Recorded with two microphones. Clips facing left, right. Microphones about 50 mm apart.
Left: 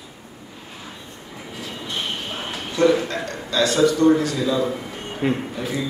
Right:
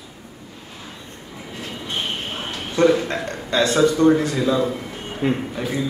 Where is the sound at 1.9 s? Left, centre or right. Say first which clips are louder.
Right 1 dB; right.